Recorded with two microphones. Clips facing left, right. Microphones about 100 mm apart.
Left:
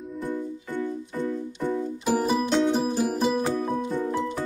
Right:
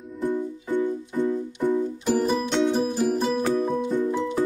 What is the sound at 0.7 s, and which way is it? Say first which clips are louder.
Music: right 5 dB; 15° right (ahead or behind).